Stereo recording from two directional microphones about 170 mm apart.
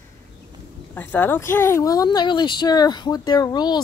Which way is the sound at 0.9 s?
10° left (ahead or behind).